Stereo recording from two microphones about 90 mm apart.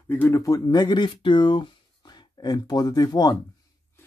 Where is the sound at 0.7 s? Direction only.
55° left (ahead or behind).